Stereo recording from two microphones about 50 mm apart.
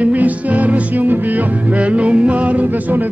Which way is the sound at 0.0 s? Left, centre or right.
Right.